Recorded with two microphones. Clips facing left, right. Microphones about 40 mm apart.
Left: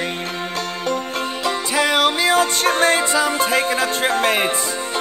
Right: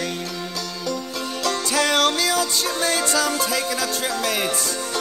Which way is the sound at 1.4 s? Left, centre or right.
Centre.